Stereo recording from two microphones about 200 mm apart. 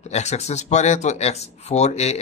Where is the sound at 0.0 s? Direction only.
35° left (ahead or behind).